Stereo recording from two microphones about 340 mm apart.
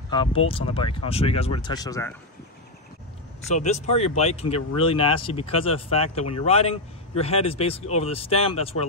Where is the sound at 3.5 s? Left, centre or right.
Centre.